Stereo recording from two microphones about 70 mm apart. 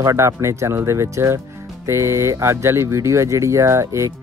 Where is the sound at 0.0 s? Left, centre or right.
Right.